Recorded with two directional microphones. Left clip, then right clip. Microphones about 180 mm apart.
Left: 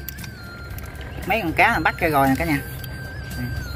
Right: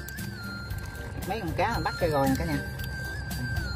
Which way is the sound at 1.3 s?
Centre (ahead or behind).